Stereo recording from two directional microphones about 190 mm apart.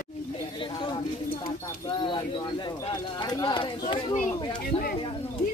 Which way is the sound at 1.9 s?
25° left (ahead or behind).